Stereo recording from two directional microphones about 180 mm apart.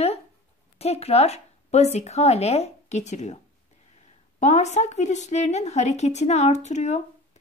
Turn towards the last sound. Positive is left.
turn(degrees=40)  # may be behind; listen again after turning